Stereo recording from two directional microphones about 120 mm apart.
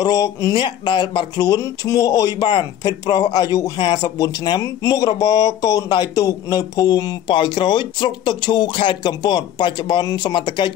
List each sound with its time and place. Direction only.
0.0 s speech: 30° left (ahead or behind)
0.6 s speech: 40° left (ahead or behind)